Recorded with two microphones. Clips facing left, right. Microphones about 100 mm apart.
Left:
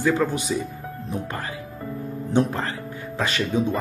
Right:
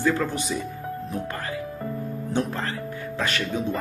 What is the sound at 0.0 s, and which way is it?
Speech, 10° left (ahead or behind).